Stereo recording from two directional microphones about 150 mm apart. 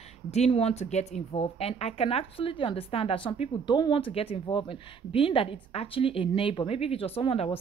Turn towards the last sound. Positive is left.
turn(degrees=35)  # may be behind; listen again after turning